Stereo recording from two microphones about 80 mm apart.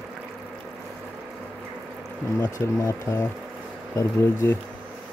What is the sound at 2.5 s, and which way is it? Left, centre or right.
Speech, left.